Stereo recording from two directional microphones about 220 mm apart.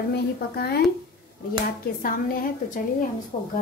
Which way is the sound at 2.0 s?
40° left (ahead or behind).